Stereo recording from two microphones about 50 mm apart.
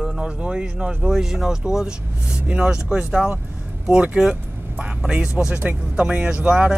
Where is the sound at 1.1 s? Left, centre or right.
Centre.